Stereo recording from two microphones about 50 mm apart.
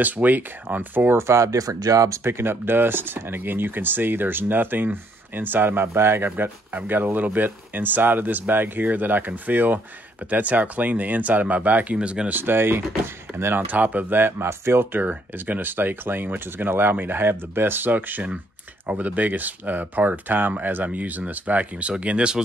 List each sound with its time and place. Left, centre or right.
0.0 s speech: right
1.1 s speech: right
2.0 s speech: right
2.3 s speech: right
6.3 s speech: right
12.3 s speech: right
13.7 s speech: right
14.9 s speech: right